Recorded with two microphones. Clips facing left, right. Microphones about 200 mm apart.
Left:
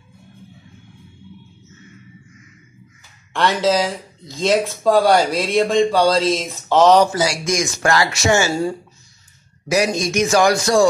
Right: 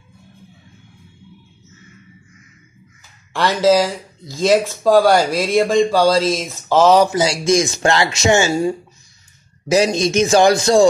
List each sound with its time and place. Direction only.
3.3 s speech: 5° right (ahead or behind)
7.1 s speech: 25° right (ahead or behind)